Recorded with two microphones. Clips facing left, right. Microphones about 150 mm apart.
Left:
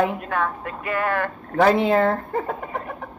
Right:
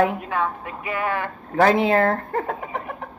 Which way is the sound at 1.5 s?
Centre (ahead or behind).